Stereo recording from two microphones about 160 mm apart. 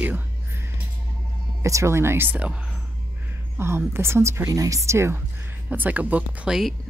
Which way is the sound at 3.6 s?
15° right (ahead or behind).